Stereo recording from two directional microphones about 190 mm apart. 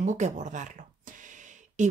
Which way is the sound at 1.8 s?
40° right (ahead or behind).